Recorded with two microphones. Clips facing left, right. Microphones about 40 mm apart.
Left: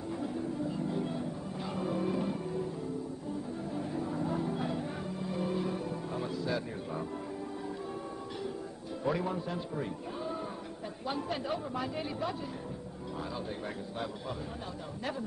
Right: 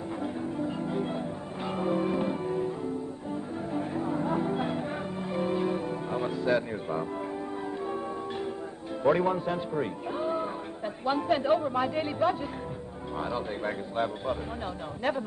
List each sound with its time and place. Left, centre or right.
0.2 s music: right
3.7 s music: right
9.0 s a man's voice: right